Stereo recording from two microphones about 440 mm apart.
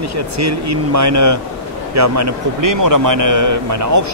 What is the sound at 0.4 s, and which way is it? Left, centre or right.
A man's voice, right.